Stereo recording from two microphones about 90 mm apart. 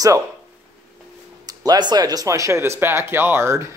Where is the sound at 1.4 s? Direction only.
45° right (ahead or behind).